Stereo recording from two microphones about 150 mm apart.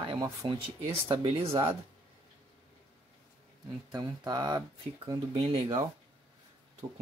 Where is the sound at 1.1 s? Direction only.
40° right (ahead or behind).